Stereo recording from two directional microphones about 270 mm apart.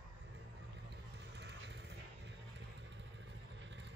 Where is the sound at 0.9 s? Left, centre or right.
Right.